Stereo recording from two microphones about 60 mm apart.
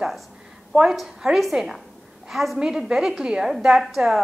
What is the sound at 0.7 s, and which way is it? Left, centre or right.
A woman's voice, centre.